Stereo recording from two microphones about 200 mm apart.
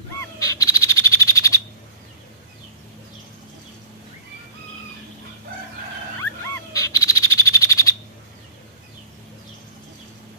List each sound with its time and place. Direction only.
0.2 s frog: 15° left (ahead or behind)
6.1 s frog: 15° left (ahead or behind)